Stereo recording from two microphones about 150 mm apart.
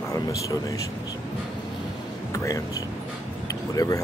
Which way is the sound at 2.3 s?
20° left (ahead or behind).